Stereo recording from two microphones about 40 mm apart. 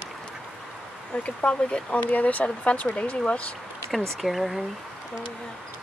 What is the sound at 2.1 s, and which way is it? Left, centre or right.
Speech, left.